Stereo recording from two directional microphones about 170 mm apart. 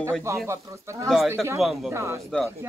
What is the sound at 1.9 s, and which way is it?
Speech, 15° right (ahead or behind).